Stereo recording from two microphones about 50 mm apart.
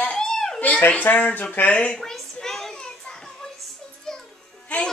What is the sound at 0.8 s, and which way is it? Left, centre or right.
Speech, left.